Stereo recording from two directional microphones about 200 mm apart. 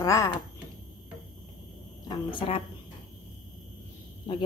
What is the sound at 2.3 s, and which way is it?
Mantra, 30° left (ahead or behind).